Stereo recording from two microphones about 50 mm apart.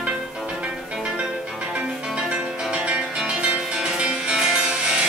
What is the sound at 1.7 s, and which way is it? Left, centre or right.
Music, centre.